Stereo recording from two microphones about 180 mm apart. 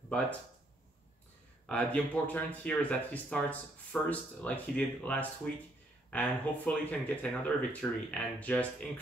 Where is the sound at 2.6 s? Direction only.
10° left (ahead or behind).